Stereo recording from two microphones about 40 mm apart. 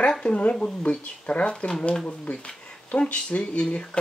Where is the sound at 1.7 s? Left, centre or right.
Left.